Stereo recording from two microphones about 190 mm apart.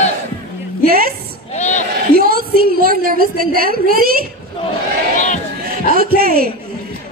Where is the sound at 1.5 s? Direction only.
40° left (ahead or behind).